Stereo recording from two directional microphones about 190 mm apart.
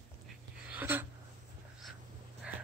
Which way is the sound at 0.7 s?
10° right (ahead or behind).